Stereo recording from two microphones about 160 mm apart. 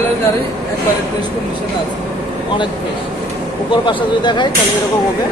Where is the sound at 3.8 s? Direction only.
30° left (ahead or behind).